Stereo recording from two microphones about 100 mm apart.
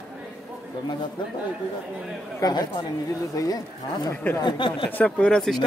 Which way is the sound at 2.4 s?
45° left (ahead or behind).